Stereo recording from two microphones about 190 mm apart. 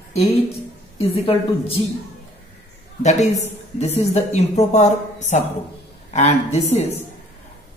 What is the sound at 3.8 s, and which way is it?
Speech, 35° left (ahead or behind).